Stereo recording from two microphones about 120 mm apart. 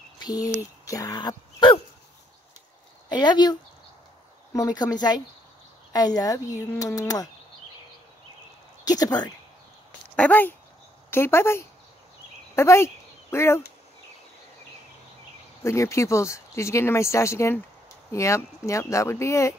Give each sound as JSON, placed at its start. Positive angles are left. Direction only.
{"t": 0.2, "sound": "a sound", "side_deg": 35}
{"t": 0.8, "sound": "speech", "side_deg": 30}
{"t": 3.1, "sound": "speech", "side_deg": 40}
{"t": 4.6, "sound": "speech", "side_deg": 30}
{"t": 8.8, "sound": "speech", "side_deg": 30}
{"t": 10.1, "sound": "speech", "side_deg": 15}
{"t": 15.6, "sound": "speech", "side_deg": 25}